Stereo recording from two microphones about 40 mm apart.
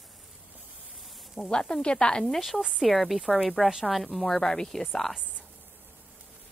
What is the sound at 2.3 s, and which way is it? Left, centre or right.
Speech, centre.